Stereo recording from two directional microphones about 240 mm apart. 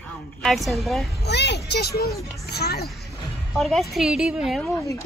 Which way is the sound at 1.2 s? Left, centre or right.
Left.